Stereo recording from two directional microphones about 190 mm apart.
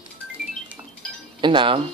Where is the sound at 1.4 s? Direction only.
25° right (ahead or behind).